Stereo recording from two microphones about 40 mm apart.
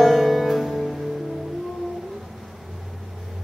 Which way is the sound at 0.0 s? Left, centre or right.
Centre.